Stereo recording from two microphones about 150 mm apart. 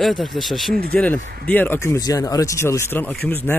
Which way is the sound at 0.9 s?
10° left (ahead or behind).